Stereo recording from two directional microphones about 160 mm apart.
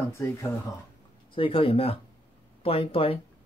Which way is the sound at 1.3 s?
35° left (ahead or behind).